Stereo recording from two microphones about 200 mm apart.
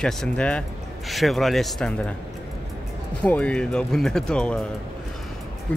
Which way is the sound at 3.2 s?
5° left (ahead or behind).